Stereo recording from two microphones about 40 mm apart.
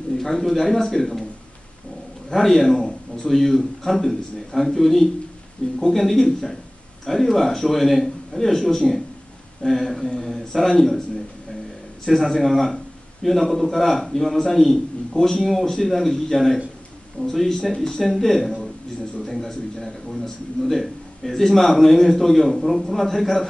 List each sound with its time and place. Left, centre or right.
0.2 s a man's voice: centre
2.3 s a man's voice: centre
5.6 s speech: left
5.9 s a man's voice: centre
12.1 s a man's voice: centre